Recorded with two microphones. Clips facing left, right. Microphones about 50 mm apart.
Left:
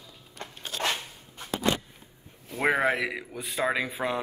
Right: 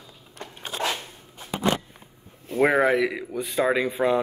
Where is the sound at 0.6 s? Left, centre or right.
Right.